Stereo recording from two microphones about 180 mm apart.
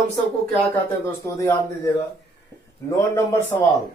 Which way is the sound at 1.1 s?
15° left (ahead or behind).